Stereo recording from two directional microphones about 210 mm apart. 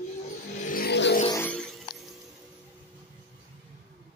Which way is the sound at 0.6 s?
40° left (ahead or behind).